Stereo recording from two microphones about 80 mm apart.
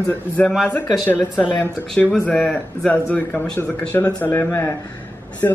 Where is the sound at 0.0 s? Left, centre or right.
Left.